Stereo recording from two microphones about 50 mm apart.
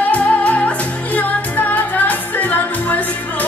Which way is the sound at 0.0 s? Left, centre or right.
Left.